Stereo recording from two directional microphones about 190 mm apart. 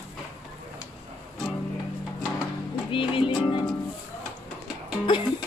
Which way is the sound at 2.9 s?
25° left (ahead or behind).